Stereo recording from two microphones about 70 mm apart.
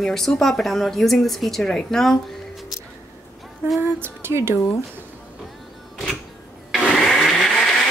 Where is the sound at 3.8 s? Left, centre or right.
Right.